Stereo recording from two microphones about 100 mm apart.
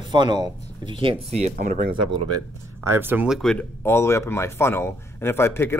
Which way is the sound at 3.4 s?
10° left (ahead or behind).